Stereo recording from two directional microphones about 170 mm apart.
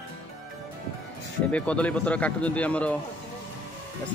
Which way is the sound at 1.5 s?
10° left (ahead or behind).